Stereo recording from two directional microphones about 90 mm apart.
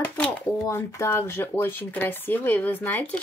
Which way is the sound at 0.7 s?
30° left (ahead or behind).